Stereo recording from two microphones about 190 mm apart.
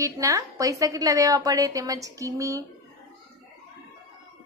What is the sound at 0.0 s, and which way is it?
A woman's voice, 15° right (ahead or behind).